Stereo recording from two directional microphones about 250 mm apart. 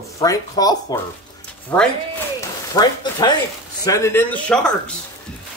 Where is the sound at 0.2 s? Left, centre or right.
Centre.